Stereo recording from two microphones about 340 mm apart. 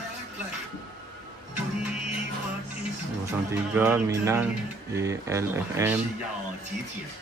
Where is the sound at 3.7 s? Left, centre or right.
Centre.